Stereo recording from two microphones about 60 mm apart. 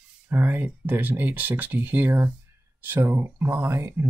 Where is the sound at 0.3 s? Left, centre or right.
Right.